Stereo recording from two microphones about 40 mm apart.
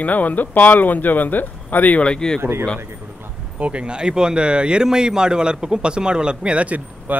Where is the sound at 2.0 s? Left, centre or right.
Left.